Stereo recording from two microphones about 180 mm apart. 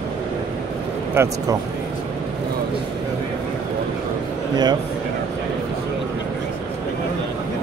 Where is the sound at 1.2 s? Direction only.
15° right (ahead or behind).